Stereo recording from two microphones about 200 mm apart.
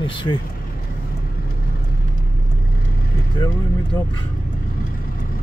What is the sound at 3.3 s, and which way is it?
Speech, 20° left (ahead or behind).